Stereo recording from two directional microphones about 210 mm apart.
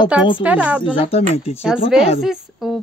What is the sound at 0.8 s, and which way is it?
Speech, 25° left (ahead or behind).